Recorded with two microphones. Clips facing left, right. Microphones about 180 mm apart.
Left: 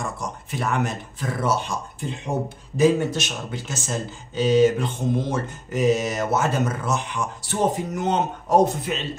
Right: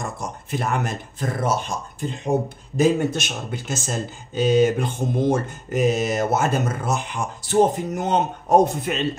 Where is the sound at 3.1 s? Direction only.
50° right (ahead or behind).